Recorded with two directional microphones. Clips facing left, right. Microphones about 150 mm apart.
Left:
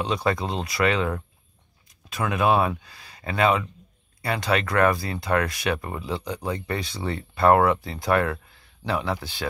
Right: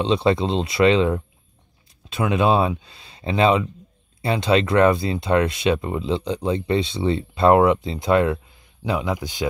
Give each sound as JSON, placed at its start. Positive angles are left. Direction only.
{"t": 0.0, "sound": "speech", "side_deg": -25}